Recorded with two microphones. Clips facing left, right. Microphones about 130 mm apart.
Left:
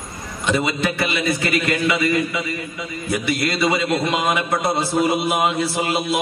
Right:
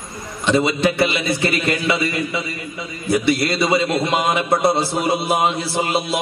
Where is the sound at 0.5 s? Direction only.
30° right (ahead or behind).